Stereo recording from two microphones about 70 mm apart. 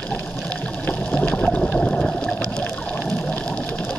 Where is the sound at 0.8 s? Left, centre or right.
Left.